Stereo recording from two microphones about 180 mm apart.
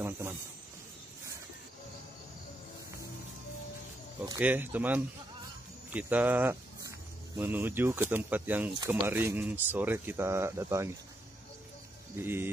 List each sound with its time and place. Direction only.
0.0 s speech: 15° right (ahead or behind)
4.4 s speech: 10° right (ahead or behind)
8.7 s speech: 25° right (ahead or behind)
9.0 s speech: 15° right (ahead or behind)
12.2 s speech: 10° right (ahead or behind)